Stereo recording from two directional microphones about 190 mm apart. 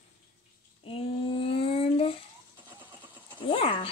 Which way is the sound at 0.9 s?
30° left (ahead or behind).